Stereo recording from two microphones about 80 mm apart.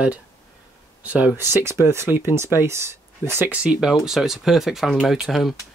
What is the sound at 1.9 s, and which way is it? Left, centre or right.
Speech, right.